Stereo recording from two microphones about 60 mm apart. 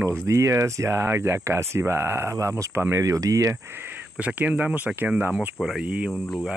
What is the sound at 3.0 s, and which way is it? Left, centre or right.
Speech, right.